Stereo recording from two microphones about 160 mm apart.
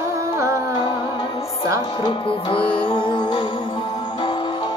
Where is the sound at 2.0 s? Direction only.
30° left (ahead or behind).